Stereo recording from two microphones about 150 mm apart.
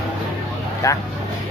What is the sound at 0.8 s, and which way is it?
Vehicle, 25° left (ahead or behind).